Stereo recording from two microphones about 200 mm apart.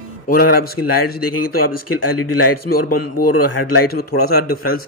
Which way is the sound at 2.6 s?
45° left (ahead or behind).